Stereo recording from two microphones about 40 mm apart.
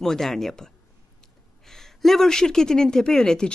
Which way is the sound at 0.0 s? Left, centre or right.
Centre.